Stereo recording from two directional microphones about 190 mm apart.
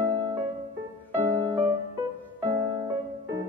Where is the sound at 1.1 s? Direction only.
25° right (ahead or behind).